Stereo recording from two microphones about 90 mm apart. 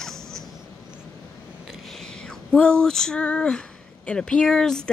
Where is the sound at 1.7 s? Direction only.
5° left (ahead or behind).